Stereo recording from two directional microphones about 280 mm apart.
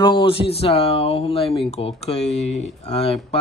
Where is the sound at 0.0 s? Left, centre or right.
Centre.